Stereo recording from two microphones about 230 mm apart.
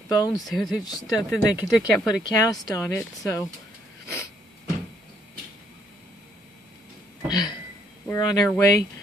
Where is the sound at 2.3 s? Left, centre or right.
Centre.